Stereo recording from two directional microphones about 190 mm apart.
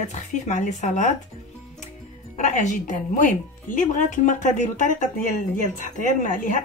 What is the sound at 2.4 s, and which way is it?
Speech, 40° left (ahead or behind).